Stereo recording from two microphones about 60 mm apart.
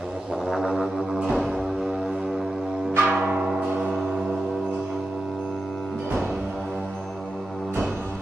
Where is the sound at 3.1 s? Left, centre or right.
Centre.